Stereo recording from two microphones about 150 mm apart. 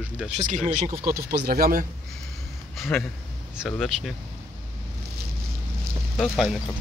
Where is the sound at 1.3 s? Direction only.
90° right.